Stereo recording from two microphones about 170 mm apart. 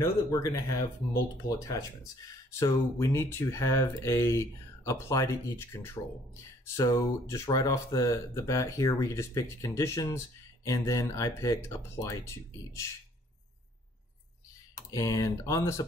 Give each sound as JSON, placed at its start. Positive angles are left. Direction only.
{"t": 0.0, "sound": "speech", "side_deg": 20}
{"t": 14.9, "sound": "speech", "side_deg": 20}